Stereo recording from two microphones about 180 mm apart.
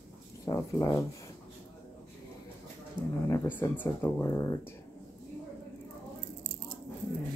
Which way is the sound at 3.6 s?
10° left (ahead or behind).